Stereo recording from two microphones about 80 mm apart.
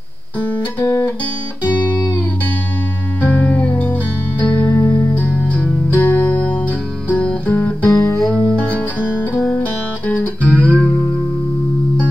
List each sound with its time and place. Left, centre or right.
0.4 s music: centre
3.2 s music: left
10.0 s music: centre